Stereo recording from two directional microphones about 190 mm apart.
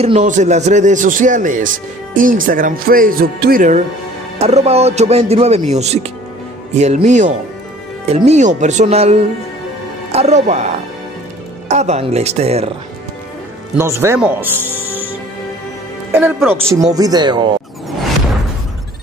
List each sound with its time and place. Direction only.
0.0 s speech: 35° right (ahead or behind)
4.4 s speech: 35° right (ahead or behind)
11.7 s speech: 35° right (ahead or behind)
13.7 s speech: 15° right (ahead or behind)
16.1 s a man's voice: 10° right (ahead or behind)
16.9 s speech: 20° right (ahead or behind)